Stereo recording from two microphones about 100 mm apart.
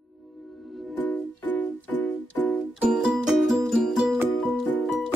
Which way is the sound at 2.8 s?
10° right (ahead or behind).